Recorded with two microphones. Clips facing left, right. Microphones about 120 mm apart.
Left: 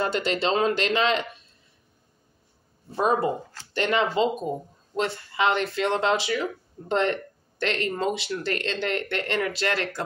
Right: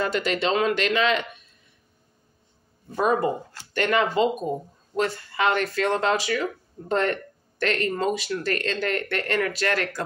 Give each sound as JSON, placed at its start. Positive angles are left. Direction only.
{"t": 0.0, "sound": "speech", "side_deg": 30}
{"t": 2.9, "sound": "speech", "side_deg": 30}